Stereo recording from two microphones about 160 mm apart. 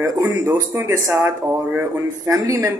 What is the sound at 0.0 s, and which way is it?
Speech, 20° right (ahead or behind).